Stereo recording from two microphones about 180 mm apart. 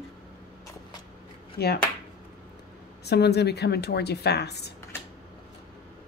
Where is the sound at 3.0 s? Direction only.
65° left (ahead or behind).